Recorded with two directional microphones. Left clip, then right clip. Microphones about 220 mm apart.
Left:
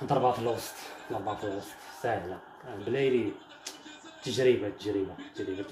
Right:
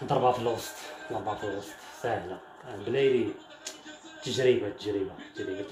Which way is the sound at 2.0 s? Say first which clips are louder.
Even; centre (ahead or behind).